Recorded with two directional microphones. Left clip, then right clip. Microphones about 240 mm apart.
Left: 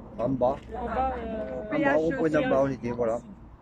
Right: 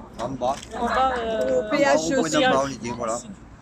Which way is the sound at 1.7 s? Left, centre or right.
Right.